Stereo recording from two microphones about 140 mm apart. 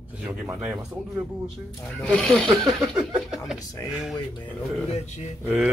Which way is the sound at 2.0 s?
5° left (ahead or behind).